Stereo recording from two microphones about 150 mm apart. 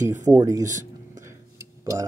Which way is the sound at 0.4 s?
20° right (ahead or behind).